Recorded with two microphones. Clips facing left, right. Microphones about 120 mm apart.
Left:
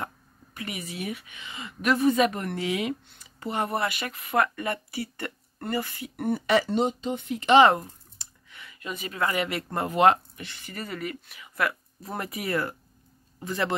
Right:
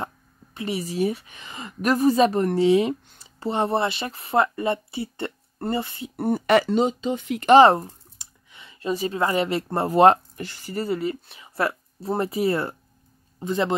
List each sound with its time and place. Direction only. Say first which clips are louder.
0.6 s a woman's voice: right 10 dB; 30° right (ahead or behind)
6.2 s speech: right 4 dB; 40° right (ahead or behind)
6.5 s speech: right 4 dB; 80° right
7.4 s a woman's voice: right 4 dB; 35° right (ahead or behind)
8.2 s a man's voice: even; 20° right (ahead or behind)